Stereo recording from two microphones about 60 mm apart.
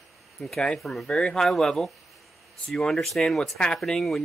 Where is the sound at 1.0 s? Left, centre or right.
Centre.